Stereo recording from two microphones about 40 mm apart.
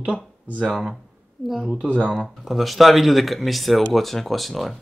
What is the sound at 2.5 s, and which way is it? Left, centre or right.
Speech, centre.